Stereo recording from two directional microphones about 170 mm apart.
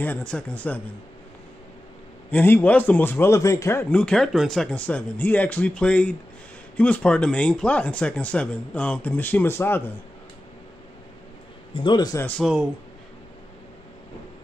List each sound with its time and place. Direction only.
0.0 s speech: 5° left (ahead or behind)
2.3 s speech: 10° left (ahead or behind)
11.7 s a man's voice: 25° left (ahead or behind)
12.3 s speech: centre (ahead or behind)